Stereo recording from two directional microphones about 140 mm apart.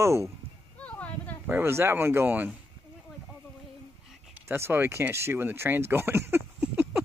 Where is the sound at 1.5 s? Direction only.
15° right (ahead or behind).